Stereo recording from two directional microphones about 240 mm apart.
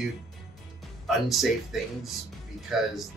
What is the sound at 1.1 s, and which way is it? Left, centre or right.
Speech, centre.